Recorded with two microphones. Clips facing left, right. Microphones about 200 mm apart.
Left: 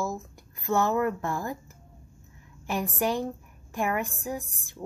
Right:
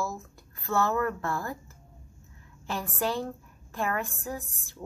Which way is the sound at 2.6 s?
15° left (ahead or behind).